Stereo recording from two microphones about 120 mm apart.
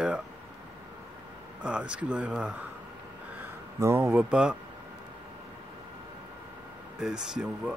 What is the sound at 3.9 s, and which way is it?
Speech, 10° right (ahead or behind).